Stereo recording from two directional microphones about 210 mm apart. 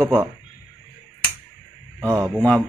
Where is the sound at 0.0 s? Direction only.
10° right (ahead or behind).